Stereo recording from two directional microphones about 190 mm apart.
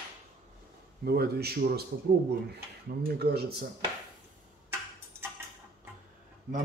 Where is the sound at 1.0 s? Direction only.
55° right (ahead or behind).